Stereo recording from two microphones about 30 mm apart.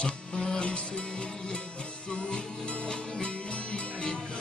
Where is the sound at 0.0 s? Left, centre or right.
Left.